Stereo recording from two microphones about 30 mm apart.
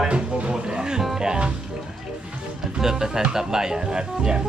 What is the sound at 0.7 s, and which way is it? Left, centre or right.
Music, right.